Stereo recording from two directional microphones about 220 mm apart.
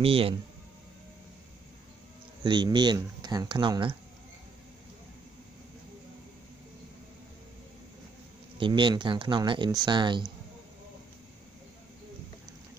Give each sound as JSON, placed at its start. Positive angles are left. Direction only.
{"t": 0.0, "sound": "speech", "side_deg": -25}
{"t": 2.4, "sound": "speech", "side_deg": -20}
{"t": 8.5, "sound": "speech", "side_deg": -20}